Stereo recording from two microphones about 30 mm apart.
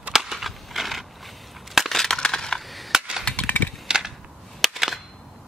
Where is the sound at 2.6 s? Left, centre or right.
Centre.